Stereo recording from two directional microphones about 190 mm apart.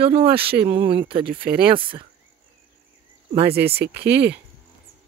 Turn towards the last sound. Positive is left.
turn(degrees=-60)  # may be behind; listen again after turning